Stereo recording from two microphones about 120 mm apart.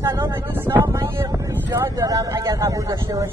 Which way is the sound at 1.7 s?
25° right (ahead or behind).